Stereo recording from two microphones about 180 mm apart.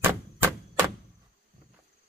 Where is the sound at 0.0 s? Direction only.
10° right (ahead or behind).